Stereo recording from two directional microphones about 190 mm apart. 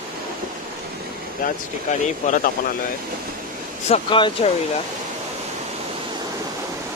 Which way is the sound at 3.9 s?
25° left (ahead or behind).